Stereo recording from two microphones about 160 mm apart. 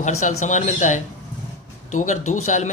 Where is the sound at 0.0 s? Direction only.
45° left (ahead or behind).